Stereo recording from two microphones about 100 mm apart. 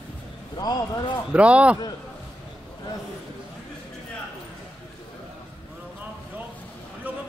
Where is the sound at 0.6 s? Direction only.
40° left (ahead or behind).